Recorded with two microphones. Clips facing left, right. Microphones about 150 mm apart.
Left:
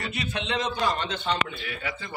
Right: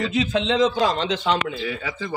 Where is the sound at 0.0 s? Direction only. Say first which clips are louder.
Right 10 dB; 90° right.